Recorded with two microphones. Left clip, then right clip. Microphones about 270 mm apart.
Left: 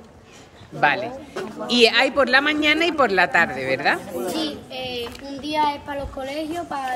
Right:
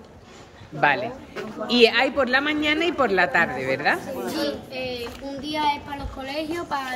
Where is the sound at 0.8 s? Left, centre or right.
Centre.